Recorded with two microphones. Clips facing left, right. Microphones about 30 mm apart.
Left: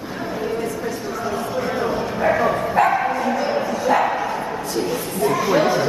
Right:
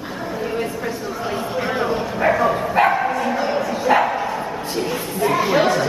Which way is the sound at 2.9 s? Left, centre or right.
Centre.